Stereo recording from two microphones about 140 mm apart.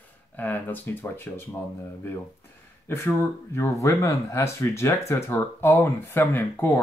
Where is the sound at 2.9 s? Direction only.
15° left (ahead or behind).